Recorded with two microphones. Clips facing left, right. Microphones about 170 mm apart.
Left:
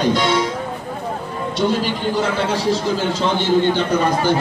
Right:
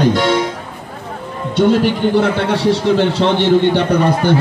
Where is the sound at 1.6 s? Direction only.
60° right (ahead or behind).